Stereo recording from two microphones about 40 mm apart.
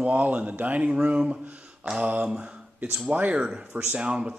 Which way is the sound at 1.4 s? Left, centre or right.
Right.